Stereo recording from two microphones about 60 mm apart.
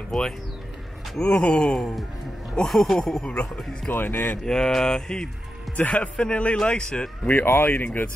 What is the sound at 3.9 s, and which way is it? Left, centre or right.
Speech, left.